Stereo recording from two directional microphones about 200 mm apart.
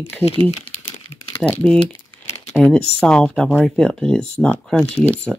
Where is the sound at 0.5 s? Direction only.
25° left (ahead or behind).